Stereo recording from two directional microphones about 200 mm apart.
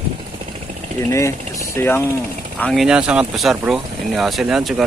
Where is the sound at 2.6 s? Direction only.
Centre (ahead or behind).